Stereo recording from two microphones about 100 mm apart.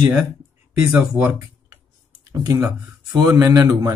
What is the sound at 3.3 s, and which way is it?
Speech, 35° right (ahead or behind).